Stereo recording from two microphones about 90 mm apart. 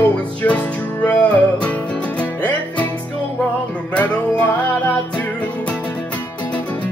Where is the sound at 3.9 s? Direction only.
15° left (ahead or behind).